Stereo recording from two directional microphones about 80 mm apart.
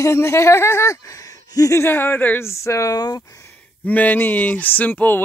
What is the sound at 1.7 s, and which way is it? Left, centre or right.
Speech, left.